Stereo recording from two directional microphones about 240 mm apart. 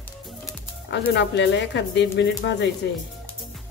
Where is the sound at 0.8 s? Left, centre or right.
Left.